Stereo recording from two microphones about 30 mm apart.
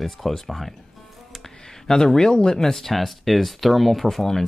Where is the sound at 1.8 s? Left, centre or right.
Centre.